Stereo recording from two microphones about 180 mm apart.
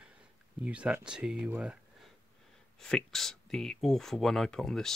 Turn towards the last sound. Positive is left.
turn(degrees=5)  # may be behind; listen again after turning